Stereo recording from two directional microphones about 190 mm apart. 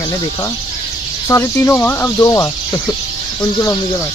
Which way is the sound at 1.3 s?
15° left (ahead or behind).